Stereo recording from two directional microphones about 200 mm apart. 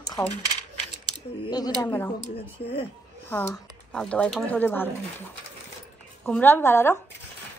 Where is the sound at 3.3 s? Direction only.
10° left (ahead or behind).